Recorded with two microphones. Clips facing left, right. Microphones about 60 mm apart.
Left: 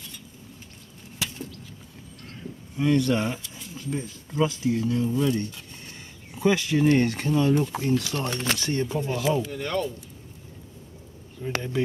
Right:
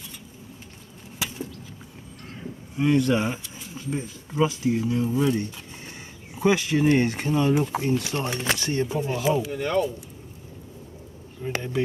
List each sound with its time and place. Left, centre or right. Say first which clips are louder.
2.4 s speech: right 1 dB; centre
11.5 s speech: even; right